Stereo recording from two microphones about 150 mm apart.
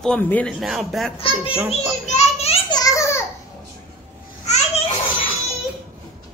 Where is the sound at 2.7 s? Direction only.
20° left (ahead or behind).